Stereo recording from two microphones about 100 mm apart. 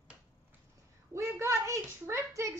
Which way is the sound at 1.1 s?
30° right (ahead or behind).